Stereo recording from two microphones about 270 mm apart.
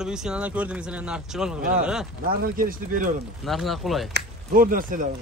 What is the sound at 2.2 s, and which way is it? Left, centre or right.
Speech, right.